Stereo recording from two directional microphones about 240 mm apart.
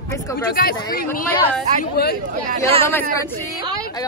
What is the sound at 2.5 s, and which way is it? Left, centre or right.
Speech, right.